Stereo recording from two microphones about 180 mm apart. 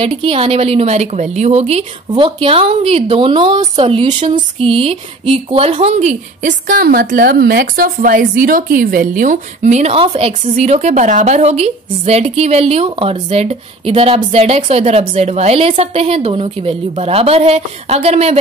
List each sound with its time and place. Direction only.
0.0 s a woman's voice: 30° right (ahead or behind)